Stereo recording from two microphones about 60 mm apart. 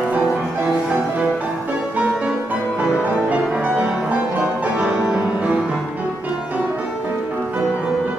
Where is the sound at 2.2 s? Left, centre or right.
Centre.